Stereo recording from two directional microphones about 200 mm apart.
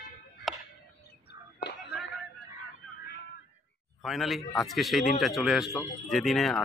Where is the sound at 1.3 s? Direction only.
55° left (ahead or behind).